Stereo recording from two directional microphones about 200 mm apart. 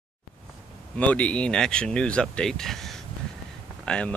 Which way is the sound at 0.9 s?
5° left (ahead or behind).